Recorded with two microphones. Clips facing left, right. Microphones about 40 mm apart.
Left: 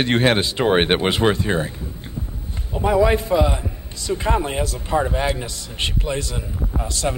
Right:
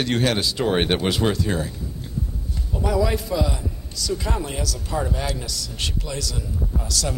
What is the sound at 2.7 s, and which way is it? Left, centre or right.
Speech, left.